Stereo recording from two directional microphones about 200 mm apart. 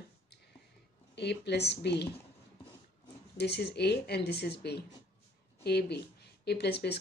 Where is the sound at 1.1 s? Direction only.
55° left (ahead or behind).